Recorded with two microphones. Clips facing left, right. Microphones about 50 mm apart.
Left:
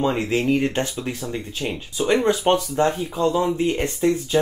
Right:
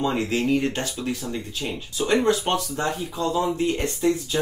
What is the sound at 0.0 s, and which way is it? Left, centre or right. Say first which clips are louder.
Speech: left 2 dB; left.